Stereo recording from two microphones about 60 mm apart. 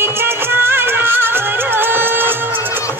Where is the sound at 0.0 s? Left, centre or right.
Right.